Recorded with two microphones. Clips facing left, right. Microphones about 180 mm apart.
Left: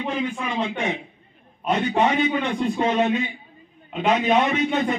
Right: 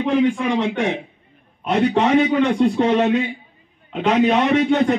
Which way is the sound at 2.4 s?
70° right (ahead or behind).